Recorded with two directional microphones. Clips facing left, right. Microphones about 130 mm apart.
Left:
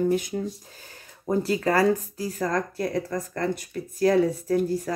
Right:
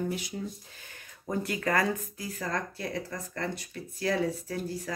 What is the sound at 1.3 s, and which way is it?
Speech, 30° left (ahead or behind).